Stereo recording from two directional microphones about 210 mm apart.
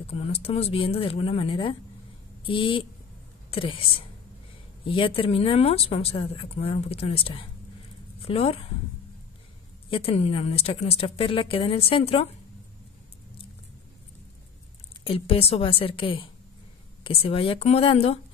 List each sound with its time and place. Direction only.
0.0 s speech: 30° left (ahead or behind)
9.8 s speech: 25° left (ahead or behind)
15.0 s speech: 25° left (ahead or behind)